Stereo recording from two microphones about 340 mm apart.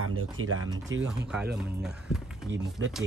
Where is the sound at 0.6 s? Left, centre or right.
Centre.